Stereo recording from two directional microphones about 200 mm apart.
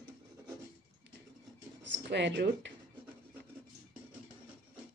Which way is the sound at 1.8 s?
60° right (ahead or behind).